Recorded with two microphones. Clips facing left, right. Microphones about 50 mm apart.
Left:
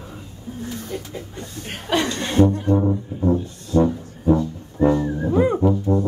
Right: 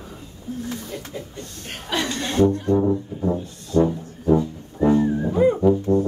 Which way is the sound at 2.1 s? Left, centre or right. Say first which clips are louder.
Right 1 dB; centre.